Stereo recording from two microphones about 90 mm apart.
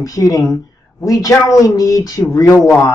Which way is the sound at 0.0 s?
40° left (ahead or behind).